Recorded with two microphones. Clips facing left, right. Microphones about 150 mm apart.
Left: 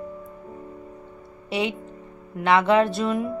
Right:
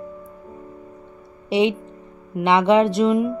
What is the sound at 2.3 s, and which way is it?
Speech, 20° right (ahead or behind).